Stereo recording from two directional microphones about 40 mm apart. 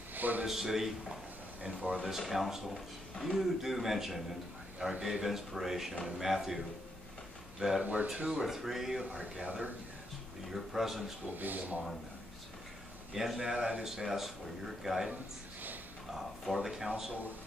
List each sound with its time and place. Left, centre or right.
0.1 s a man's voice: right
0.5 s speech: centre
1.6 s speech: right
2.0 s a man's voice: centre
7.8 s speech: right
8.3 s speech: centre
10.5 s a man's voice: centre
11.3 s speech: right
13.1 s speech: centre
13.6 s speech: right
13.8 s speech: centre
16.5 s speech: centre